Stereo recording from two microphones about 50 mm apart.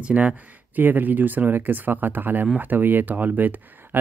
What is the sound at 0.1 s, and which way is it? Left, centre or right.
Speech, centre.